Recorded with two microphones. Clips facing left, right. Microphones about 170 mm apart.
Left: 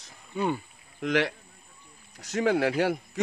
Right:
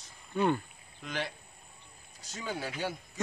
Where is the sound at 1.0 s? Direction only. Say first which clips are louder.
Left 11 dB; 80° left.